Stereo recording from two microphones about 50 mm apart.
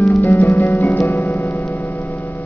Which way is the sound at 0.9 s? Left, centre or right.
Left.